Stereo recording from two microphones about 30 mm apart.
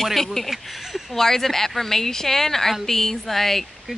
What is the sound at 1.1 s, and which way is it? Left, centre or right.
Speech, centre.